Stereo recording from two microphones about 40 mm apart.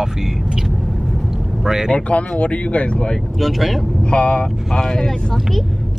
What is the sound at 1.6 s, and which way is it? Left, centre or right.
Speech, centre.